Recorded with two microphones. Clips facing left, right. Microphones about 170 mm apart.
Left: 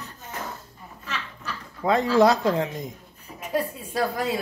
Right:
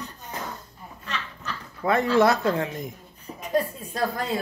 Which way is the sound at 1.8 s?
15° left (ahead or behind).